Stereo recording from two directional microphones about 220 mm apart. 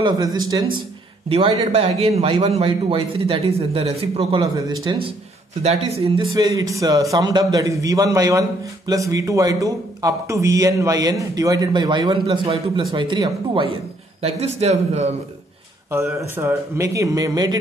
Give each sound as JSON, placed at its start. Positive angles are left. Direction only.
{"t": 0.0, "sound": "a man's voice", "side_deg": -15}
{"t": 15.9, "sound": "speech", "side_deg": -10}